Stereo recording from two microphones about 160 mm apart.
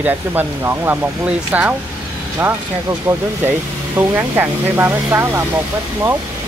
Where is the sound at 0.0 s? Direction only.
10° right (ahead or behind).